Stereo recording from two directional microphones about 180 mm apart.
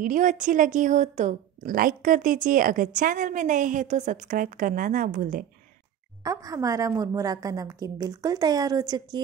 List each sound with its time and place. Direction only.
0.0 s a woman's voice: 45° right (ahead or behind)
6.2 s a woman's voice: 20° right (ahead or behind)